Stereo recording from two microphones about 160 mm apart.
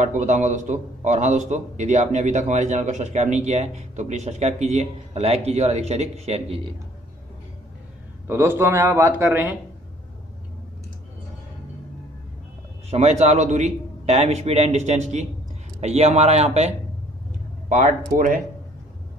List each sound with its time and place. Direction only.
0.0 s a man's voice: 50° right (ahead or behind)
8.3 s a man's voice: 15° right (ahead or behind)
12.9 s a man's voice: 40° right (ahead or behind)